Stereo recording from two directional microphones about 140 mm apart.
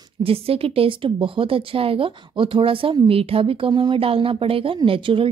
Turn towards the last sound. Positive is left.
turn(degrees=-40)  # may be behind; listen again after turning